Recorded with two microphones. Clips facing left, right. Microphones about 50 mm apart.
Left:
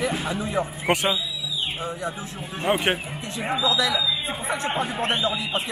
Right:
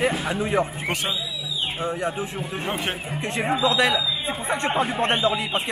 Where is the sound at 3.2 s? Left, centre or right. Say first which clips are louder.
Right 4 dB; right.